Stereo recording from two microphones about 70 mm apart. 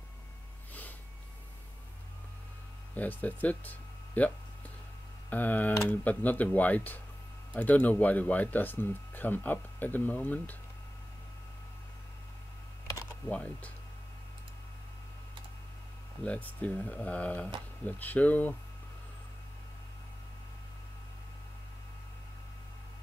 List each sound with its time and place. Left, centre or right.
2.9 s a sound: left
5.3 s speech: left
13.3 s speech: centre
16.2 s speech: centre